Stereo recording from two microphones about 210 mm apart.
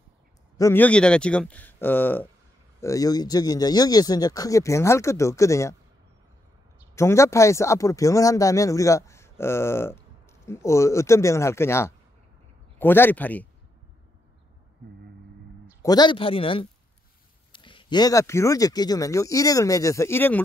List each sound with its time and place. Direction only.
0.6 s speech: 10° left (ahead or behind)
7.0 s speech: 15° left (ahead or behind)
15.8 s speech: 20° left (ahead or behind)